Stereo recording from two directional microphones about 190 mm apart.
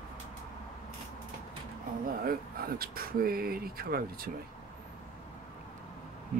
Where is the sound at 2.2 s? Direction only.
50° right (ahead or behind).